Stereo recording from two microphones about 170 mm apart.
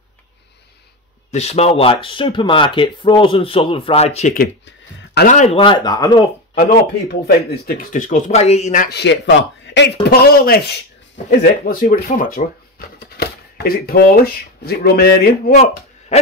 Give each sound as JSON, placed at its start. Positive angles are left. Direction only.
{"t": 1.3, "sound": "speech", "side_deg": 40}
{"t": 4.3, "sound": "speech", "side_deg": 70}
{"t": 5.3, "sound": "speech", "side_deg": 45}
{"t": 5.6, "sound": "speech", "side_deg": 25}
{"t": 7.2, "sound": "speech", "side_deg": 65}
{"t": 8.8, "sound": "speech", "side_deg": 80}
{"t": 10.0, "sound": "speech", "side_deg": 65}
{"t": 15.5, "sound": "speech", "side_deg": 35}